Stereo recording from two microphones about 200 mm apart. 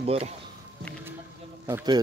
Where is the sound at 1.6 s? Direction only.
15° right (ahead or behind).